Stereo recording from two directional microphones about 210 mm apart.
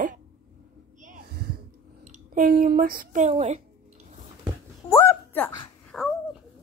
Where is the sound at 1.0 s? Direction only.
40° right (ahead or behind).